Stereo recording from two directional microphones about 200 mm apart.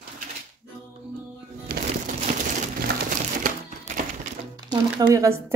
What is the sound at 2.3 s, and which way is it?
Crushing, 35° right (ahead or behind).